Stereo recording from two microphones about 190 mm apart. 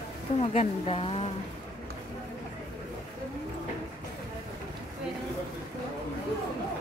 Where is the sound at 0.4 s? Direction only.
35° left (ahead or behind).